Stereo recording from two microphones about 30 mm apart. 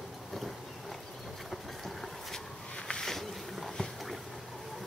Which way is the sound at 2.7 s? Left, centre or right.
Left.